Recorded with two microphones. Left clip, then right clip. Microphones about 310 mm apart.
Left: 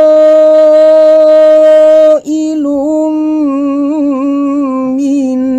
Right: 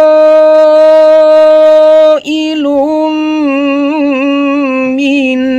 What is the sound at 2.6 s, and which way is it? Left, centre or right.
Singing, right.